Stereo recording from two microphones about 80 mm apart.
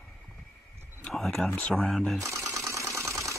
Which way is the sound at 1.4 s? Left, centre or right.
Centre.